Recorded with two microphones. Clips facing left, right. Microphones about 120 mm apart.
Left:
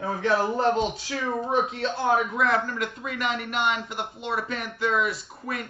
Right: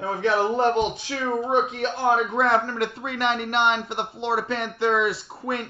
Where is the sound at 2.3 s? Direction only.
30° right (ahead or behind).